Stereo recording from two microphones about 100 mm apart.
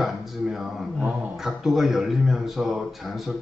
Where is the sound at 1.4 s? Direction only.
5° right (ahead or behind).